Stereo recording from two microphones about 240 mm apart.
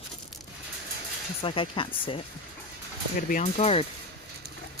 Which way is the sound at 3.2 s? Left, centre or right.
Left.